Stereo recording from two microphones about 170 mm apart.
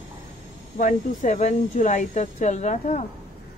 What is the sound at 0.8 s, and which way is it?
Speech, 50° left (ahead or behind).